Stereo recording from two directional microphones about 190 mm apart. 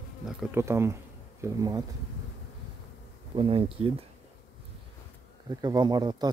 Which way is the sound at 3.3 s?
30° right (ahead or behind).